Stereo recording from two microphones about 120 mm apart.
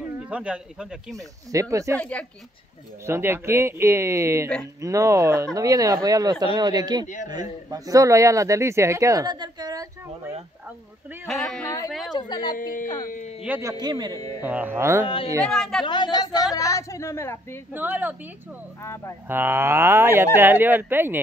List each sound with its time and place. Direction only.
0.2 s speech: 10° right (ahead or behind)
1.5 s a man's voice: 25° right (ahead or behind)
2.0 s speech: 10° left (ahead or behind)
3.1 s a man's voice: 20° right (ahead or behind)
11.2 s speech: 5° left (ahead or behind)
12.1 s speech: 35° left (ahead or behind)
13.1 s speech: 90° left
13.6 s speech: 30° right (ahead or behind)
14.4 s speech: 15° right (ahead or behind)
15.5 s speech: 5° left (ahead or behind)
15.8 s a woman's voice: 40° left (ahead or behind); by 17.6 s 20° left (ahead or behind)
17.7 s speech: 15° right (ahead or behind)
18.8 s a woman's voice: 25° left (ahead or behind)
19.2 s a man's voice: 20° right (ahead or behind)